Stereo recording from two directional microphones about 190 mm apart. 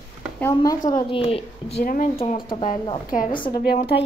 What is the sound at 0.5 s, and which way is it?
Speech, 20° left (ahead or behind).